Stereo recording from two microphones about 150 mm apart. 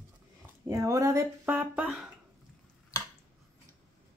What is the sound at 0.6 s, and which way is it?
Speech, 20° right (ahead or behind).